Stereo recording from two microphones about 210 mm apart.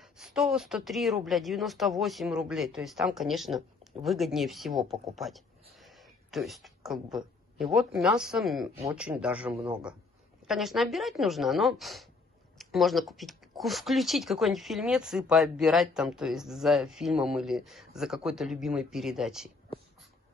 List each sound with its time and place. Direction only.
0.0 s speech: centre (ahead or behind)